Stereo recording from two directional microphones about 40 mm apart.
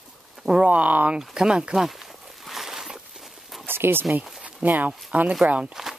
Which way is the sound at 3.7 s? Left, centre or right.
Right.